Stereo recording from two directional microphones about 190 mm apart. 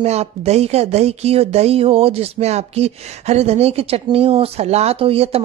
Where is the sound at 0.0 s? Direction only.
35° right (ahead or behind).